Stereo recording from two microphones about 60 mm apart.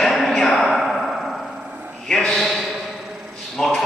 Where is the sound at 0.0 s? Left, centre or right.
Centre.